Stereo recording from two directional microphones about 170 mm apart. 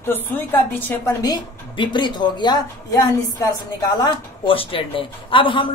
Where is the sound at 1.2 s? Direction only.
25° left (ahead or behind).